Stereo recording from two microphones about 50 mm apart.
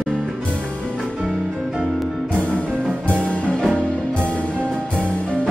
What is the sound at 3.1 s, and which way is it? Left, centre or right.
Music, left.